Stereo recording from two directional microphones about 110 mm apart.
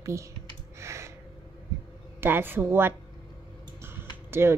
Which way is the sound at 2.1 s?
20° right (ahead or behind).